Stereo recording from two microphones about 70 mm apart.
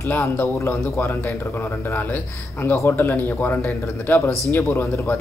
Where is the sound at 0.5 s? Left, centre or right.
Left.